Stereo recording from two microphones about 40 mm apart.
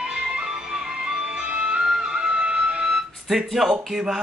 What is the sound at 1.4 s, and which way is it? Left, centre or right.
Music, right.